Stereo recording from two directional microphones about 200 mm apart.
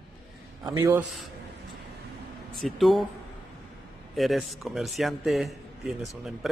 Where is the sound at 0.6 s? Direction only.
20° right (ahead or behind).